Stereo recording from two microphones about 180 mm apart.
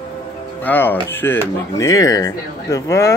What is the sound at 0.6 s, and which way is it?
Speech, 10° left (ahead or behind).